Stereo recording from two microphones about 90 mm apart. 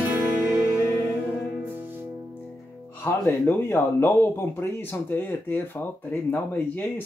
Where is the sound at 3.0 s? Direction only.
25° left (ahead or behind).